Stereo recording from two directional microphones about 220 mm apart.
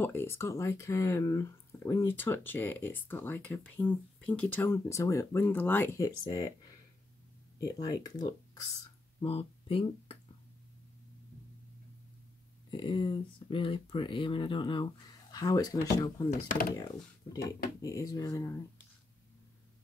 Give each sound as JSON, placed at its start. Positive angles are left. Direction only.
{"t": 0.0, "sound": "speech", "side_deg": 10}
{"t": 7.6, "sound": "speech", "side_deg": 15}
{"t": 12.7, "sound": "speech", "side_deg": 20}
{"t": 16.3, "sound": "speech", "side_deg": 40}
{"t": 16.7, "sound": "speech", "side_deg": 15}